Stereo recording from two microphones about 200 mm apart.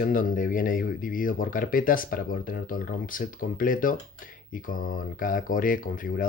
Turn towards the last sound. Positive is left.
turn(degrees=45)  # may be behind; listen again after turning